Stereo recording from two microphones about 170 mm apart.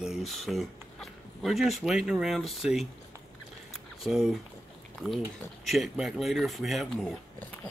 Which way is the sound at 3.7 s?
Centre (ahead or behind).